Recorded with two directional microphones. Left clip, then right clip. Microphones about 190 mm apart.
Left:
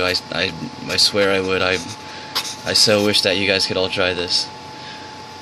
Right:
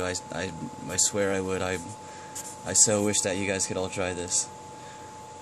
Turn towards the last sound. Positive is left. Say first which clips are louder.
# left 11 dB
turn(degrees=-15)  # may be behind; listen again after turning